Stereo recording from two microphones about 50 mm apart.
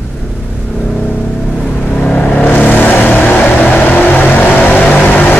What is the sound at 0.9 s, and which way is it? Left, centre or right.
Vehicle, left.